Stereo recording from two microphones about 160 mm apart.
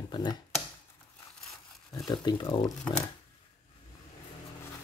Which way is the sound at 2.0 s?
25° left (ahead or behind).